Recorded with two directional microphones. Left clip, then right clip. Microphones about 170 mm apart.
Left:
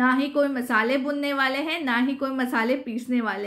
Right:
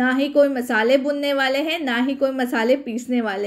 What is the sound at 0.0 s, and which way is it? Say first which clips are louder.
A woman's voice: right 5 dB; 25° right (ahead or behind).